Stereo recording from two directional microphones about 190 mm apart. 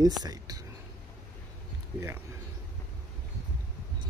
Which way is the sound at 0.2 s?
20° right (ahead or behind).